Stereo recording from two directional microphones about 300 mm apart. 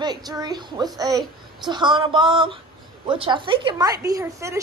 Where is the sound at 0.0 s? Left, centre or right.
Centre.